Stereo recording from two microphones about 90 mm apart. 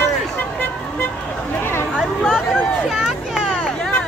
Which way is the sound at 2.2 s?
5° left (ahead or behind).